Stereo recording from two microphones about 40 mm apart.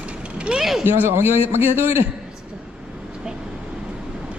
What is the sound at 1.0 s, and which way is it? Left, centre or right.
A man's voice, right.